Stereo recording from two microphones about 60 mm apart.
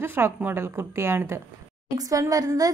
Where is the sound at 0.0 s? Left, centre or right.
Right.